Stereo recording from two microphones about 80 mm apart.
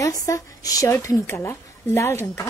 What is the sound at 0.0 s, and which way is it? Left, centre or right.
Speech, left.